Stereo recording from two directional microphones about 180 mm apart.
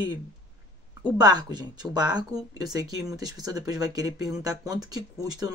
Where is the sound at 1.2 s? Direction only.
20° right (ahead or behind).